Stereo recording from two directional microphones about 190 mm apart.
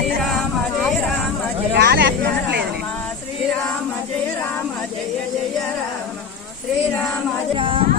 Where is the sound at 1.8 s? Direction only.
60° right (ahead or behind).